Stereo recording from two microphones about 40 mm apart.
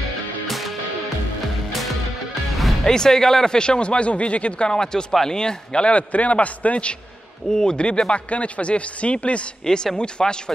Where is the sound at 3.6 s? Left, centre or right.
Left.